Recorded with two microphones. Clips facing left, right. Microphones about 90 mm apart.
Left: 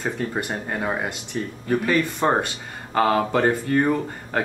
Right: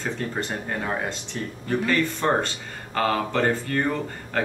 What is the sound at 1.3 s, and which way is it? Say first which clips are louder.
Speech: left 3 dB; 15° left (ahead or behind).